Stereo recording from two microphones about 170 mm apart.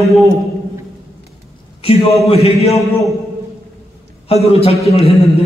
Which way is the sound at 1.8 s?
35° left (ahead or behind).